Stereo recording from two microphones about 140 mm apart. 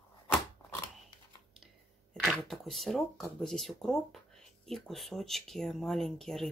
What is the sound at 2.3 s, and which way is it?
Speech, centre (ahead or behind).